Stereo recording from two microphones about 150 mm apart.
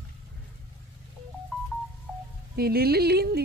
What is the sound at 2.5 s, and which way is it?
Speech, 90° right.